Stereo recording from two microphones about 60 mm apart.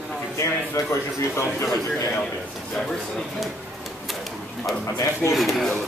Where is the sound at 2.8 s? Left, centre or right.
Centre.